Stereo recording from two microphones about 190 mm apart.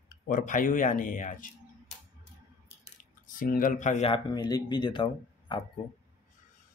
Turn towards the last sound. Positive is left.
turn(degrees=25)  # may be behind; listen again after turning